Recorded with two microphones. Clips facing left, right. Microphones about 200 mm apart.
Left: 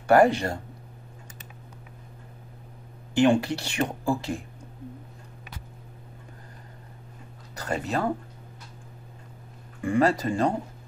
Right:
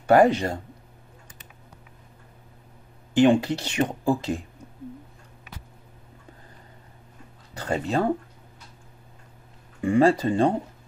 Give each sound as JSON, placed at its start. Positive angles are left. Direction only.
{"t": 0.0, "sound": "speech", "side_deg": -20}
{"t": 3.2, "sound": "speech", "side_deg": -20}
{"t": 7.6, "sound": "speech", "side_deg": -25}
{"t": 9.8, "sound": "speech", "side_deg": -25}